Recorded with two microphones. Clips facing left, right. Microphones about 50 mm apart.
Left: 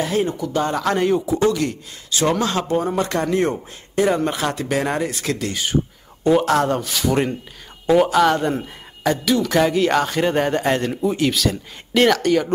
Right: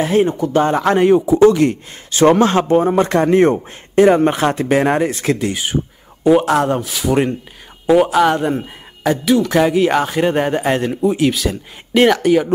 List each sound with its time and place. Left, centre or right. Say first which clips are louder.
0.0 s speech: right 6 dB; right; by 12.5 s centre